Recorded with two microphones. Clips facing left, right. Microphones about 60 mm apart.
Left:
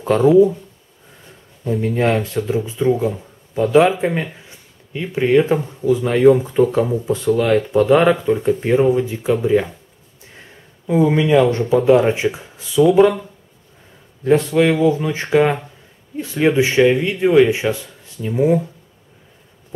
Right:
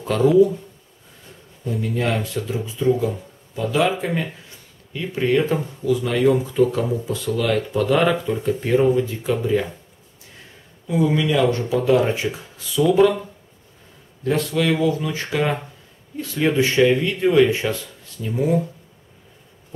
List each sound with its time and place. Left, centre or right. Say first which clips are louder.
0.0 s speech: left 4 dB; left
0.3 s speech: left 3 dB; centre
1.6 s a man's voice: left 6 dB; left
10.9 s speech: left 5 dB; left
14.2 s speech: left 6 dB; left